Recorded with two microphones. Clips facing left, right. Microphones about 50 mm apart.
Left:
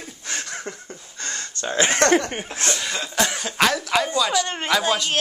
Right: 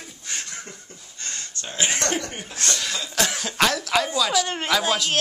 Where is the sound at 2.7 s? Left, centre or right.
Centre.